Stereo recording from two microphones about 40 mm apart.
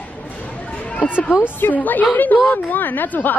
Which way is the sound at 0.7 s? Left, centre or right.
Left.